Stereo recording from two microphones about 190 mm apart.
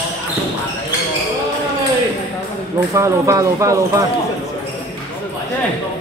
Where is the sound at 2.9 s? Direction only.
15° right (ahead or behind).